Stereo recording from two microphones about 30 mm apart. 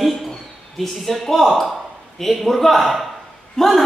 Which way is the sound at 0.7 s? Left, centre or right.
Centre.